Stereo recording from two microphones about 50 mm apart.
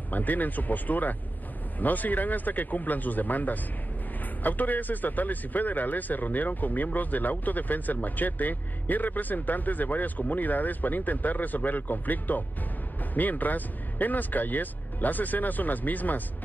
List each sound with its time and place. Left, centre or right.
0.1 s a man's voice: left